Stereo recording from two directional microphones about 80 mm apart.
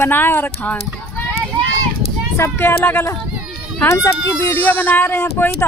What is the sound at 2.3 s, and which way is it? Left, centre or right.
Speech, left.